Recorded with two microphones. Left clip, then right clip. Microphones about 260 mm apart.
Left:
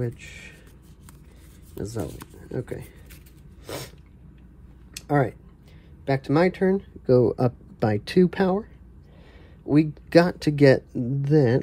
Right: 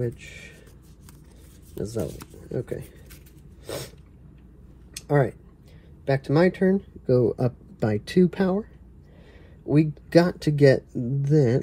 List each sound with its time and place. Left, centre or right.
0.0 s speech: left
1.8 s speech: left
3.6 s a sound: left
4.9 s a sound: left
6.0 s speech: left
9.7 s speech: left